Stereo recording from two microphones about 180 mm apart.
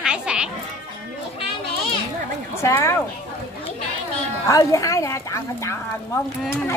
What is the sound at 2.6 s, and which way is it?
Speech, 15° left (ahead or behind).